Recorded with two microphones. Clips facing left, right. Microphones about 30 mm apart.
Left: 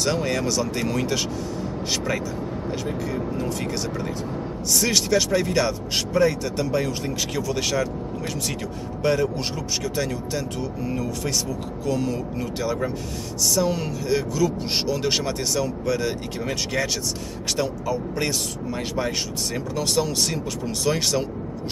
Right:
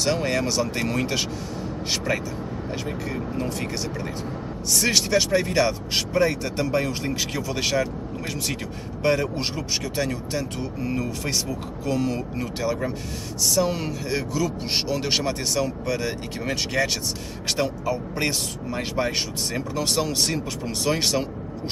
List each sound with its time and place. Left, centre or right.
0.0 s speech: centre
4.8 s speech: centre
5.9 s speech: right
9.0 s speech: right
11.8 s speech: right
13.6 s speech: centre
17.6 s speech: right